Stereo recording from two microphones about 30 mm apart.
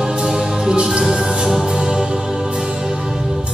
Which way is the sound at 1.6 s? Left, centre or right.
Right.